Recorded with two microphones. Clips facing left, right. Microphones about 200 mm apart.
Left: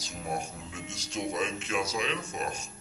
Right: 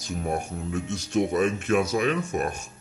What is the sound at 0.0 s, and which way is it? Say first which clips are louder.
Speech: right 6 dB; 55° right (ahead or behind).